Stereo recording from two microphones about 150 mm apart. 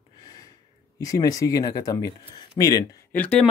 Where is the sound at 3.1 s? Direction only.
5° left (ahead or behind).